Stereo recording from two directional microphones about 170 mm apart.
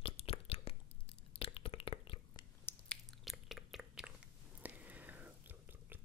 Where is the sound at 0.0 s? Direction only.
35° left (ahead or behind).